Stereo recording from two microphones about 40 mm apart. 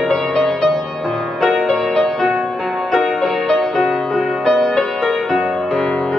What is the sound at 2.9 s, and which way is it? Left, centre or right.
Music, centre.